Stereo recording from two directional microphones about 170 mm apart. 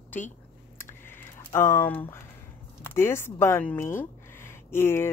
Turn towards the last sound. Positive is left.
turn(degrees=15)  # may be behind; listen again after turning